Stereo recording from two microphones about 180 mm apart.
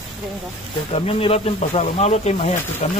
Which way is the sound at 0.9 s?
35° left (ahead or behind).